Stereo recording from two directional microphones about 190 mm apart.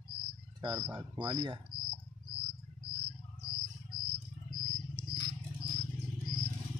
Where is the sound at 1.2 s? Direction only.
25° right (ahead or behind).